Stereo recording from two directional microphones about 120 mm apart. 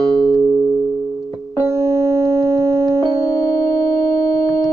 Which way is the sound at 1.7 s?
25° right (ahead or behind).